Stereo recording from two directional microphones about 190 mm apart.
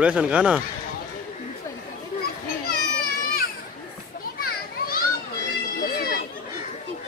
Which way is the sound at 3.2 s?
50° left (ahead or behind).